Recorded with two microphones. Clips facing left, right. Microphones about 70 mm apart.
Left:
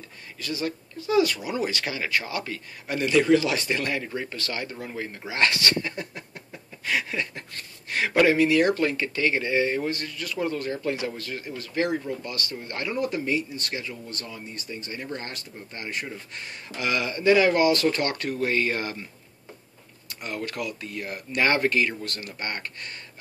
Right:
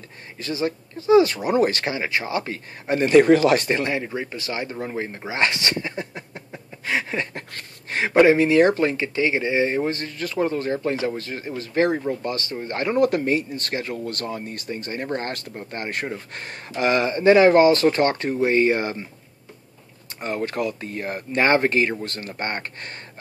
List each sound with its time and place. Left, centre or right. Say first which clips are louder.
0.4 s speech: right 5 dB; right
1.9 s speech: right 3 dB; right
3.7 s speech: right 4 dB; right
7.3 s a sound: right 4 dB; right
8.0 s speech: right 4 dB; right
13.9 s speech: right 9 dB; right
14.2 s speech: right 8 dB; right
20.2 s speech: right 6 dB; right